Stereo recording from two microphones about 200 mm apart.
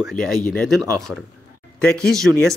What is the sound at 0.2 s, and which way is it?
Speech, centre (ahead or behind).